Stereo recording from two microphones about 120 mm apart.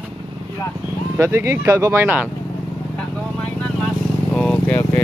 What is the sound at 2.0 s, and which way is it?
Mantra, 15° right (ahead or behind).